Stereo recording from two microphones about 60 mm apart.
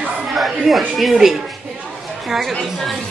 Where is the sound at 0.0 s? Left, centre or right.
Centre.